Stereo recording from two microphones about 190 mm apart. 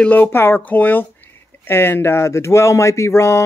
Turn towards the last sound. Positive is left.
turn(degrees=15)  # may be behind; listen again after turning